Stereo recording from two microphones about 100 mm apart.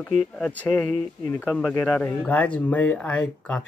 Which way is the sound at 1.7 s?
20° left (ahead or behind).